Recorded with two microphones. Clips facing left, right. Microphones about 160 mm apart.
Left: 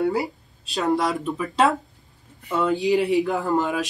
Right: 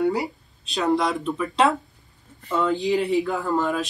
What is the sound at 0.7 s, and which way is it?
Speech, centre (ahead or behind).